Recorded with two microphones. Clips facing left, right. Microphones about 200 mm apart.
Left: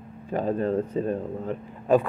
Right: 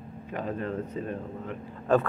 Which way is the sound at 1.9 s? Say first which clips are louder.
Left 3 dB; 15° left (ahead or behind).